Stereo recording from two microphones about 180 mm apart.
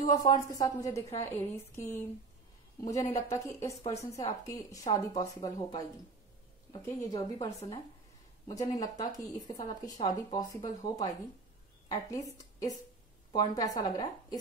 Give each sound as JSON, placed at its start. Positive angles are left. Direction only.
{"t": 0.1, "sound": "a woman's voice", "side_deg": 20}